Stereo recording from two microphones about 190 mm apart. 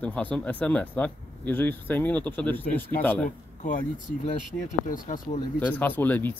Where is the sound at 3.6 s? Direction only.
45° left (ahead or behind).